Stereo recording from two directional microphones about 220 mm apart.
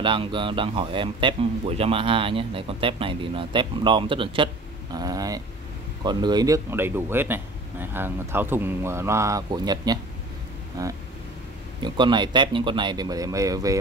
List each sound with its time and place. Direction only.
0.0 s speech: 20° right (ahead or behind)